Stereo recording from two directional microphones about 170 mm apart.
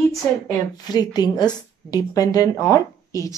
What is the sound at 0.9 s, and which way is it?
A woman's voice, 25° left (ahead or behind).